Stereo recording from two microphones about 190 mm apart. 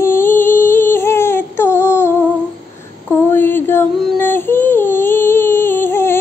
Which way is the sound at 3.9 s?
5° left (ahead or behind).